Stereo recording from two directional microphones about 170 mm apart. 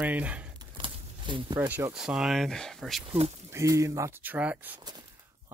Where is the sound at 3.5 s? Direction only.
15° right (ahead or behind).